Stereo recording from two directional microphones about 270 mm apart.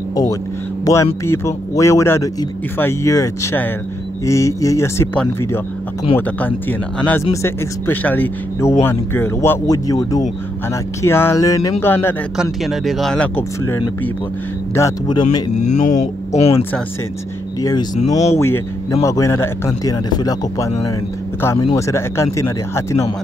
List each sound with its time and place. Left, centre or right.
0.1 s speech: centre
7.0 s speech: centre
15.8 s speech: left
17.6 s speech: centre
18.0 s speech: left
18.4 s speech: centre